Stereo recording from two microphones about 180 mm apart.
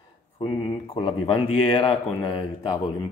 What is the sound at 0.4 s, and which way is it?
Speech, 25° left (ahead or behind).